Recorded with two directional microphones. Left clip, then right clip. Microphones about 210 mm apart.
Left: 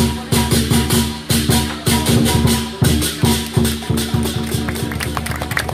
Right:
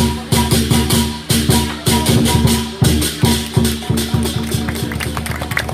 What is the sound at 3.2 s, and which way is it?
Music, 30° right (ahead or behind).